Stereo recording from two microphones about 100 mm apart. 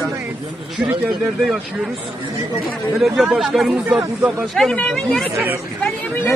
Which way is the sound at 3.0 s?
5° right (ahead or behind).